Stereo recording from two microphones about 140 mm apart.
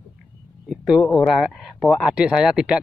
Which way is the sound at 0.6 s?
Centre (ahead or behind).